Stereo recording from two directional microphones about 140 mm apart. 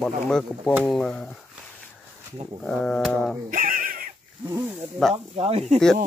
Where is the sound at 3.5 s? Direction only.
90° right.